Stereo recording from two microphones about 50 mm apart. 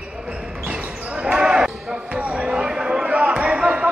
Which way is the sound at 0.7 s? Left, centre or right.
Centre.